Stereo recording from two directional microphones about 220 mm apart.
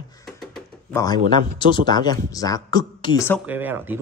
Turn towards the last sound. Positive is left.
turn(degrees=-10)  # may be behind; listen again after turning